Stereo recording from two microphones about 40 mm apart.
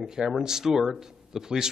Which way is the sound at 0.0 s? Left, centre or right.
Centre.